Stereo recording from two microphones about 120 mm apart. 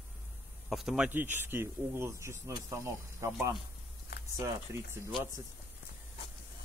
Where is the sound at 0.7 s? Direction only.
5° right (ahead or behind).